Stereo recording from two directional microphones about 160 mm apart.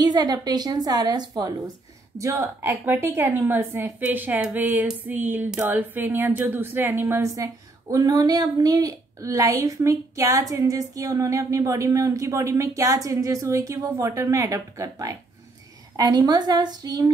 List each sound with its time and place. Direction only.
0.0 s a woman's voice: 25° right (ahead or behind)